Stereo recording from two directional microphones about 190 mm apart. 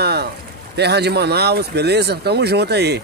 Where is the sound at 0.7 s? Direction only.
60° right (ahead or behind).